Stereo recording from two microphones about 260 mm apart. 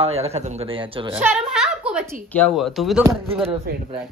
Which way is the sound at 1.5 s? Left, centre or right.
Centre.